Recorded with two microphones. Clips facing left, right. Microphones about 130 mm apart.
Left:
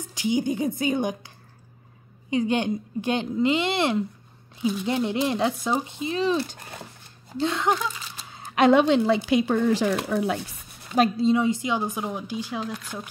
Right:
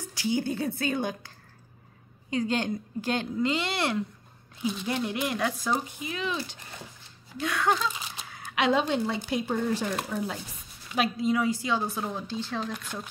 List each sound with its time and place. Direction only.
0.1 s speech: 15° left (ahead or behind)
2.3 s speech: 20° left (ahead or behind)
8.3 s a sound: 30° left (ahead or behind)
8.7 s speech: 90° left; by 10.4 s 70° left (ahead or behind)
11.1 s speech: 25° left (ahead or behind); by 13.1 s 5° left (ahead or behind)